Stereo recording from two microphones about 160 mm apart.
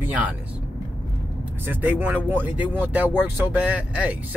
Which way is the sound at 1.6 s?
10° right (ahead or behind).